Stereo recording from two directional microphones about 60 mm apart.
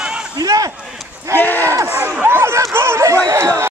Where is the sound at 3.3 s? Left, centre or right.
Right.